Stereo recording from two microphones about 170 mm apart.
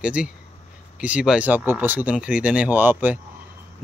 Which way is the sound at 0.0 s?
5° right (ahead or behind).